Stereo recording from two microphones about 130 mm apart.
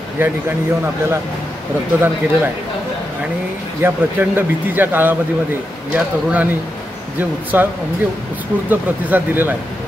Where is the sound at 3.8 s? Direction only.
15° right (ahead or behind).